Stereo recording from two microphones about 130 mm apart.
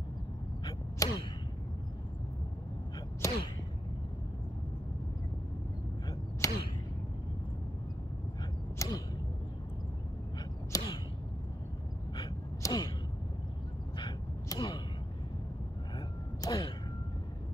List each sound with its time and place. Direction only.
0.7 s arrow: 30° left (ahead or behind)
3.2 s whip: 20° left (ahead or behind)
6.4 s arrow: 25° left (ahead or behind)
8.7 s creak: 30° left (ahead or behind)
10.7 s arrow: 25° left (ahead or behind)
12.6 s a sound: 30° left (ahead or behind)
13.9 s gasp: 35° left (ahead or behind)
16.3 s a sound: 30° left (ahead or behind)